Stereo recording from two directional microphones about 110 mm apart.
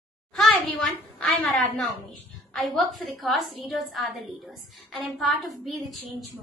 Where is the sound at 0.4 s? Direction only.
Centre (ahead or behind).